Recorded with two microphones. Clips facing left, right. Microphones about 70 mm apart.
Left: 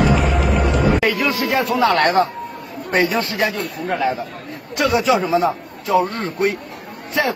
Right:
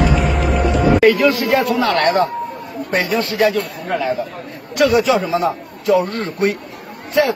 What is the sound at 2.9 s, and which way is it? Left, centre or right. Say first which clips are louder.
Speech: right 1 dB; centre.